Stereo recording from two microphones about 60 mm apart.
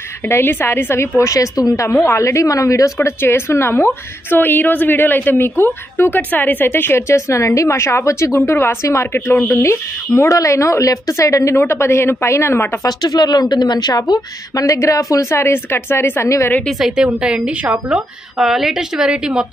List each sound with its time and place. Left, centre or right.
0.2 s a woman's voice: left
2.0 s a woman's voice: left
4.4 s a woman's voice: left
11.5 s a woman's voice: left
12.8 s a woman's voice: left
16.7 s a woman's voice: centre
18.4 s a woman's voice: centre